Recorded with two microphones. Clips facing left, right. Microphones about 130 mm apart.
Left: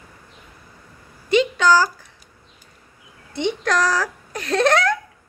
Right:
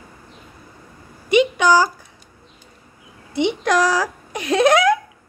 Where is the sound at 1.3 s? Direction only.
15° right (ahead or behind).